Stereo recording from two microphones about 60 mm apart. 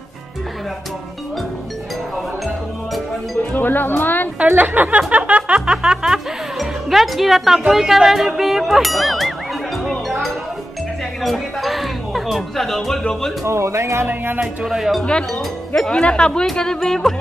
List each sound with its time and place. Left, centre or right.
3.5 s speech: left
4.4 s speech: right
5.8 s speech: centre
11.2 s speech: centre
13.5 s speech: right
14.0 s speech: right
14.4 s speech: centre
15.0 s speech: centre